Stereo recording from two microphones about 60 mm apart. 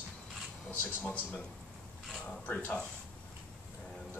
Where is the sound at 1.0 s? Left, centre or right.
Centre.